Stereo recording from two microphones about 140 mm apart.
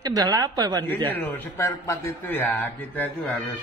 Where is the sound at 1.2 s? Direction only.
15° left (ahead or behind).